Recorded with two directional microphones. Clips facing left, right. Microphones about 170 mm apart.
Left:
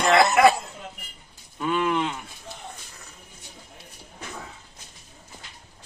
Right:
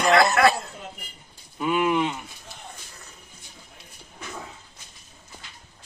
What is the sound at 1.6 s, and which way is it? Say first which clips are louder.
Speech: right 2 dB; 10° right (ahead or behind).